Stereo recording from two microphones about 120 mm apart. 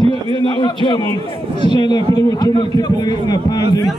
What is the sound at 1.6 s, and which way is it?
A man's voice, 40° left (ahead or behind).